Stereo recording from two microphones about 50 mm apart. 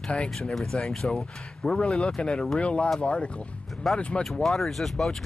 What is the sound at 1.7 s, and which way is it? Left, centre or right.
Speech, centre.